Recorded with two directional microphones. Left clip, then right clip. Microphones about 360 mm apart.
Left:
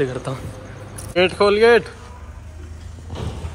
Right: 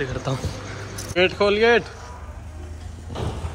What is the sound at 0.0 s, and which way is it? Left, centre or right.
A man's voice, centre.